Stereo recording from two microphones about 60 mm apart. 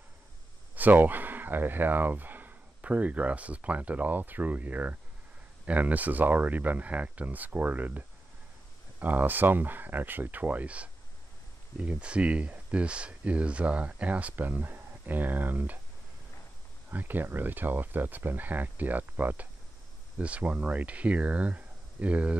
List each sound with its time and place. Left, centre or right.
0.7 s speech: right
9.0 s speech: right
16.9 s speech: right